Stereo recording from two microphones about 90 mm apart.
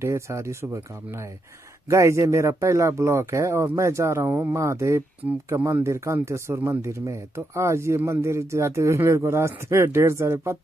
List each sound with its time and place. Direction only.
0.0 s speech: 30° right (ahead or behind)
1.9 s speech: 35° right (ahead or behind)